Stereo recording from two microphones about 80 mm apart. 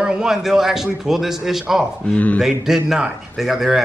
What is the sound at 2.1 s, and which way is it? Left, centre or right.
Speech, centre.